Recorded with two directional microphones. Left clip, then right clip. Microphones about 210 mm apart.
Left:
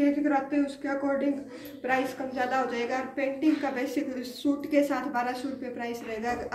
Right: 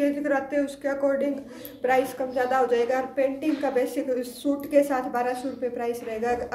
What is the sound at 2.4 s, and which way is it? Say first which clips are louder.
A woman's voice: right 6 dB; 65° right (ahead or behind).